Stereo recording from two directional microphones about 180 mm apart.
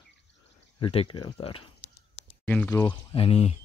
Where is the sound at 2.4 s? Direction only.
5° left (ahead or behind).